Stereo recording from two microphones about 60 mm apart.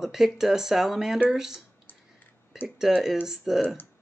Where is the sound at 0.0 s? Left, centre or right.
Centre.